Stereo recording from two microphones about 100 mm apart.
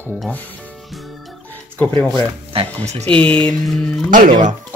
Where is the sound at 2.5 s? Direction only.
80° right.